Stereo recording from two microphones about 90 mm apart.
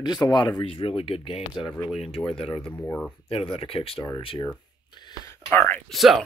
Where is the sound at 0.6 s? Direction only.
90° left.